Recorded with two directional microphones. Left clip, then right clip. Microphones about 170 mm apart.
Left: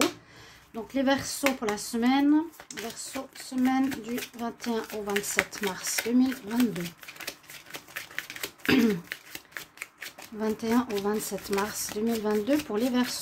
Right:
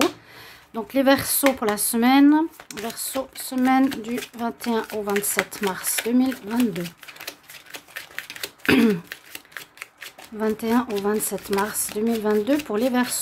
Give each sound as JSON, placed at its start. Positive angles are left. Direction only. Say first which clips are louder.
{"t": 0.7, "sound": "speech", "louder": "right 8 dB", "side_deg": -25}
{"t": 5.3, "sound": "a sound", "louder": "right 4 dB", "side_deg": -20}
{"t": 10.4, "sound": "speech", "louder": "right 5 dB", "side_deg": -15}